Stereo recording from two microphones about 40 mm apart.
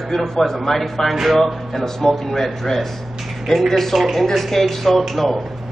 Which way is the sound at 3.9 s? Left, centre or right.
Centre.